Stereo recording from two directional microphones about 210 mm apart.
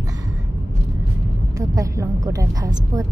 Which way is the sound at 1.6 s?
15° right (ahead or behind).